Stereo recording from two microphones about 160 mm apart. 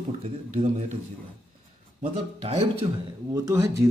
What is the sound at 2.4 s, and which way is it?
Speech, 40° right (ahead or behind).